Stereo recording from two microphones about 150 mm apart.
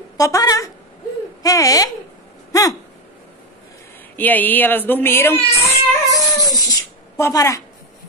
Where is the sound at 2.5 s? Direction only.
20° left (ahead or behind).